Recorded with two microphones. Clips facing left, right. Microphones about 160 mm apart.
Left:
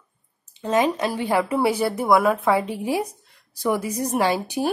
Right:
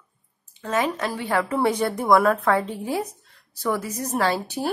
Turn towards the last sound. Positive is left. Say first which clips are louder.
# left 2 dB
turn(degrees=15)  # may be behind; listen again after turning